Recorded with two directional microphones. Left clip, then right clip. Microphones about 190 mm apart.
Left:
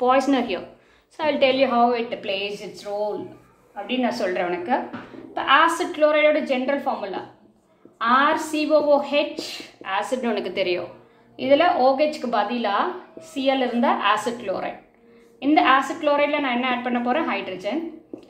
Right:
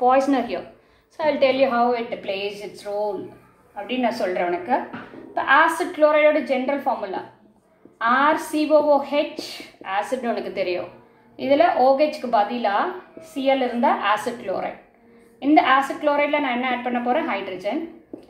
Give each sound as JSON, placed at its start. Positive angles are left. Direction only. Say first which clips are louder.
{"t": 0.0, "sound": "a woman's voice", "louder": "right 1 dB", "side_deg": 20}